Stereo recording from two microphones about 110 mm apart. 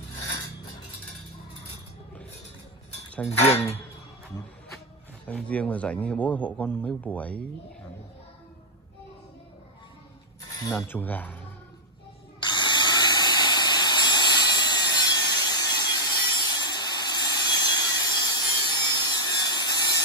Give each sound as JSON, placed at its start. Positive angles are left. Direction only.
{"t": 3.3, "sound": "speech", "side_deg": 70}
{"t": 5.2, "sound": "a man's voice", "side_deg": 10}
{"t": 10.6, "sound": "speech", "side_deg": 30}
{"t": 11.0, "sound": "a man's voice", "side_deg": 15}
{"t": 12.4, "sound": "squeal", "side_deg": 45}